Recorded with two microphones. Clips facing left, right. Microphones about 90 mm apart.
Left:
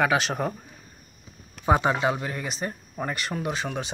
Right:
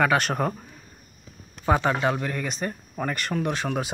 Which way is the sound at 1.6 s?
15° left (ahead or behind).